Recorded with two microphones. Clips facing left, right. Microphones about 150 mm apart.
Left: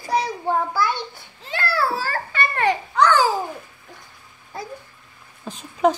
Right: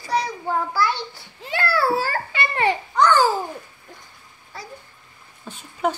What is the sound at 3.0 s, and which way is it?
Babbling, 5° left (ahead or behind).